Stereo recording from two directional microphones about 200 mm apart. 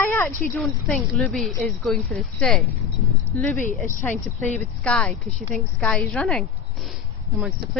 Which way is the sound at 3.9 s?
10° left (ahead or behind).